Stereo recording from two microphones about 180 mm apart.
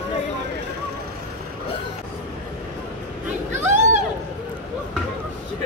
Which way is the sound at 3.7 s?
45° right (ahead or behind).